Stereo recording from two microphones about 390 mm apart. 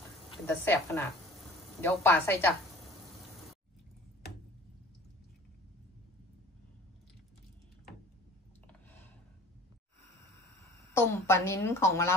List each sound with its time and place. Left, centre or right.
0.3 s a woman's voice: centre
10.6 s speech: centre